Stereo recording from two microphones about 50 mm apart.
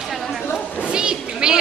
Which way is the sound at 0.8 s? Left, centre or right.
Centre.